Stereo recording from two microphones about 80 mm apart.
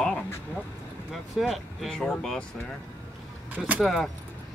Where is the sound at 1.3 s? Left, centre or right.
Centre.